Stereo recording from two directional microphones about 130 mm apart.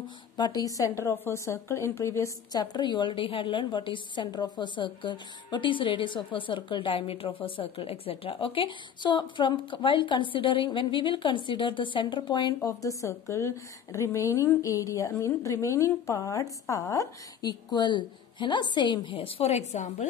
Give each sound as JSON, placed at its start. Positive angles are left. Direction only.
{"t": 0.4, "sound": "a woman's voice", "side_deg": 30}
{"t": 12.6, "sound": "a woman's voice", "side_deg": 25}